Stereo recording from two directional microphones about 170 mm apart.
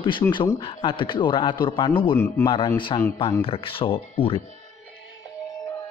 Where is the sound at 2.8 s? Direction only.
30° left (ahead or behind).